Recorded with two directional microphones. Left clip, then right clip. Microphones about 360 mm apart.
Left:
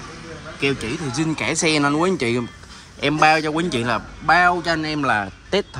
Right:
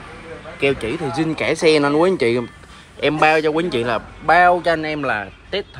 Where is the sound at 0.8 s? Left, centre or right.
Centre.